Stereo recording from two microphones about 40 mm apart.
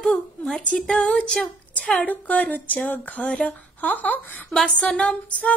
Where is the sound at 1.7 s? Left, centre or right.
Left.